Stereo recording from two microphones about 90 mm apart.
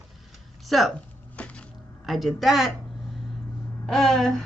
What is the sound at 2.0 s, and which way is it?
Speech, centre (ahead or behind).